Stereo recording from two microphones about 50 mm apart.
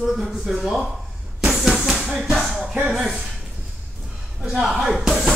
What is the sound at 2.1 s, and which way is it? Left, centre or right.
Speech, centre.